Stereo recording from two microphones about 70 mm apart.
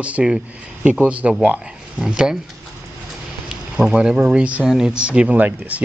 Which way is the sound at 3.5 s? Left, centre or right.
Centre.